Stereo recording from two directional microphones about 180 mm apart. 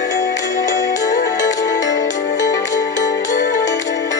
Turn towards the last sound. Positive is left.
turn(degrees=45)  # may be behind; listen again after turning